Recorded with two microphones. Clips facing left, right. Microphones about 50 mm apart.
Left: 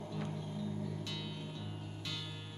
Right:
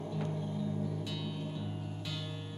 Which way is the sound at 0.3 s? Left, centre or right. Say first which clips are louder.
Right 4 dB; centre.